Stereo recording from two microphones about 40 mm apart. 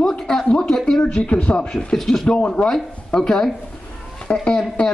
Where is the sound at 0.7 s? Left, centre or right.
Centre.